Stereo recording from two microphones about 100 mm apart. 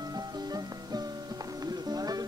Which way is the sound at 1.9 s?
40° right (ahead or behind).